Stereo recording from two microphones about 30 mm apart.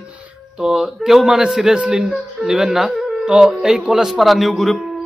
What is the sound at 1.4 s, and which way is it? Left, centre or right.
A man's voice, right.